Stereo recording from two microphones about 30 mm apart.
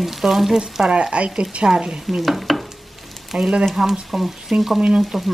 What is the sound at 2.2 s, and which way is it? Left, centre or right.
Stir, centre.